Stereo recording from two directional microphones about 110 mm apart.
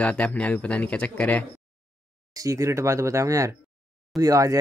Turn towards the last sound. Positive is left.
turn(degrees=-30)  # may be behind; listen again after turning